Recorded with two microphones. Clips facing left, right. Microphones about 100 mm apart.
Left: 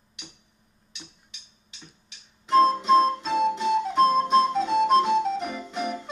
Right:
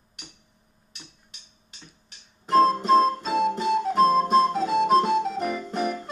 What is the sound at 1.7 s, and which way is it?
Music, 45° right (ahead or behind).